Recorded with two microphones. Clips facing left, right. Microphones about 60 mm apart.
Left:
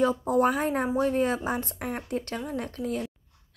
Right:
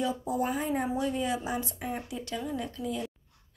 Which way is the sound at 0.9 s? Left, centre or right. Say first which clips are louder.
Left 5 dB; left.